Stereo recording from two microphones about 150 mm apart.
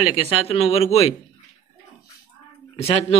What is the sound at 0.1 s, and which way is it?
Speech, 40° left (ahead or behind).